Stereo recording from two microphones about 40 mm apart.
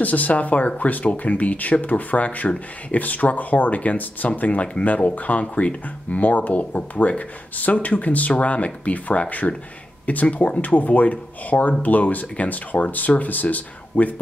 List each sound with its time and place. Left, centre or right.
0.0 s speech: left
5.4 s speech: left